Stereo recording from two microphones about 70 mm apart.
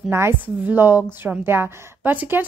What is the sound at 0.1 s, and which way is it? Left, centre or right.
A woman's voice, right.